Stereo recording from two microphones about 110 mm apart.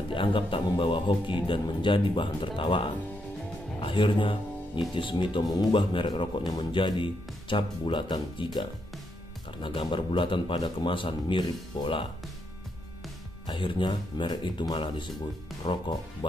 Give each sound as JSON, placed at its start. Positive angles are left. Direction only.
{"t": 0.1, "sound": "speech", "side_deg": 50}
{"t": 9.6, "sound": "speech", "side_deg": 50}
{"t": 13.5, "sound": "speech", "side_deg": 50}